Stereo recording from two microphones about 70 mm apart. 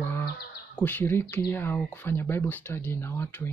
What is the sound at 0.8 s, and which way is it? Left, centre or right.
Speech, left.